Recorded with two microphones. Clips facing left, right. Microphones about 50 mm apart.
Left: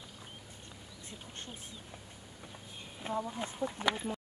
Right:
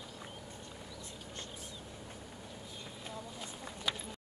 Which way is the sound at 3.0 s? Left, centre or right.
Left.